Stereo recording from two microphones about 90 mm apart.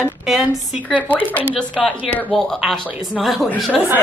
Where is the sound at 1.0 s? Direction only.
20° left (ahead or behind).